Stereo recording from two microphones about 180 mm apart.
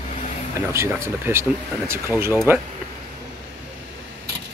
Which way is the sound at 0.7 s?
15° right (ahead or behind).